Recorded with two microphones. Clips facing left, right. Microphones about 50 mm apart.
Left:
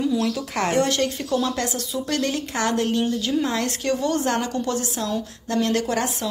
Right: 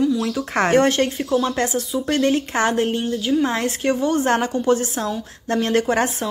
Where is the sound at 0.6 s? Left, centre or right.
Right.